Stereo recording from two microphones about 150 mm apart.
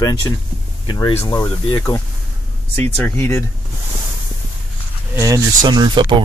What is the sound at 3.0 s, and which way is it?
Speech, 15° left (ahead or behind).